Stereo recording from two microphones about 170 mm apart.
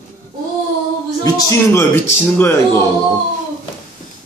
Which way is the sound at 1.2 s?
20° left (ahead or behind).